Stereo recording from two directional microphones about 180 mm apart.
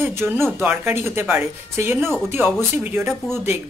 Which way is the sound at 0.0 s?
15° right (ahead or behind).